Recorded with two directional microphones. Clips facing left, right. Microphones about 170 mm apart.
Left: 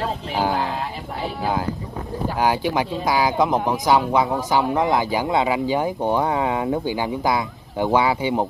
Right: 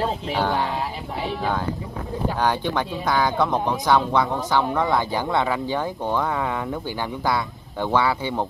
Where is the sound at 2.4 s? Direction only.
10° left (ahead or behind).